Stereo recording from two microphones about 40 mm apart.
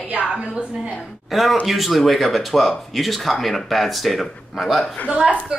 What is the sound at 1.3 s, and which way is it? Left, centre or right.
Speech, centre.